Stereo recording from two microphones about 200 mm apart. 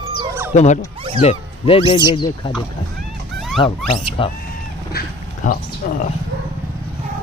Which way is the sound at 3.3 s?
Centre (ahead or behind).